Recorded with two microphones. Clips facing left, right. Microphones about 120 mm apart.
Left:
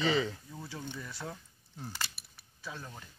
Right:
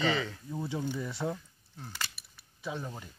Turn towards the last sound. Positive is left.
turn(degrees=-20)  # may be behind; listen again after turning